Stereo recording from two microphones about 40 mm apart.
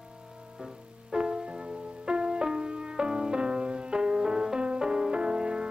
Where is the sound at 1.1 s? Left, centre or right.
Right.